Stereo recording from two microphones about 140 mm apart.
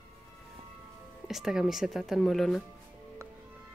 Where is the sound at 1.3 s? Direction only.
5° right (ahead or behind).